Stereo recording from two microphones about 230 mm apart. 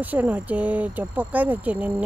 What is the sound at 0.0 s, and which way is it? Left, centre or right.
Speech, centre.